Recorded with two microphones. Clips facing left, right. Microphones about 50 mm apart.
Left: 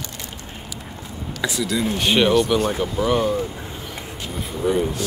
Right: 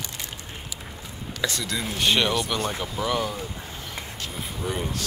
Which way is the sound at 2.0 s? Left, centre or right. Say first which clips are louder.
Left 5 dB; centre.